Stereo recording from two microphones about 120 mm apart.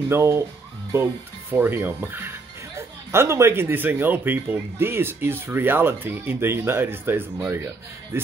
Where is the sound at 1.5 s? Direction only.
15° right (ahead or behind).